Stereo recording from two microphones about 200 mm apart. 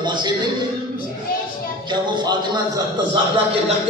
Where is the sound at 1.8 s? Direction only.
20° right (ahead or behind).